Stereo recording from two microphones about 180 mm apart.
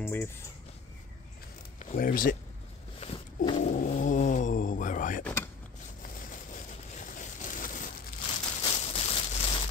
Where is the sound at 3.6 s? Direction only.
45° left (ahead or behind).